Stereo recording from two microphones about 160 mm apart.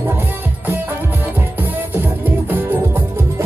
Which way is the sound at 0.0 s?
10° right (ahead or behind).